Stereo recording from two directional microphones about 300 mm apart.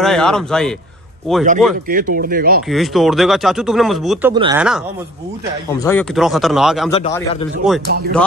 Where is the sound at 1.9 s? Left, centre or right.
Right.